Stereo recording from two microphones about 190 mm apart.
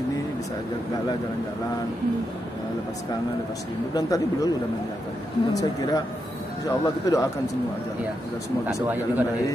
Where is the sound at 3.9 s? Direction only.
20° left (ahead or behind).